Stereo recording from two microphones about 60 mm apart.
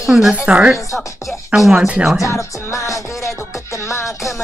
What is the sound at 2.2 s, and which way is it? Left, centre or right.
Music, left.